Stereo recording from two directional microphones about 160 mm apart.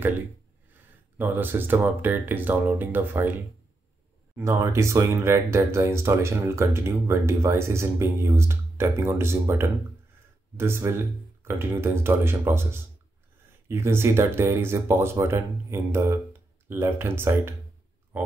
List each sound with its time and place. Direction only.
1.1 s speech: 10° right (ahead or behind)
4.4 s speech: 15° right (ahead or behind)